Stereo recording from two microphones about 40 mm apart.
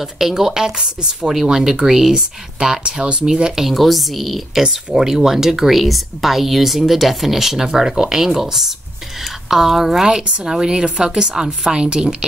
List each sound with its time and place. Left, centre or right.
0.0 s speech: centre
3.6 s speech: centre
4.6 s speech: centre
5.8 s speech: centre
10.2 s a woman's voice: right